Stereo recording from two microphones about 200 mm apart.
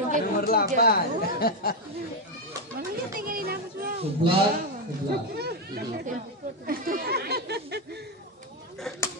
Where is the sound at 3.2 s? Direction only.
45° right (ahead or behind).